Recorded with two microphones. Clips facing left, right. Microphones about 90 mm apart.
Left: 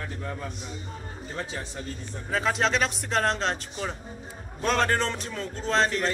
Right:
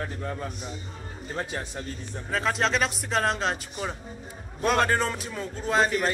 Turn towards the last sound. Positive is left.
turn(degrees=-5)  # may be behind; listen again after turning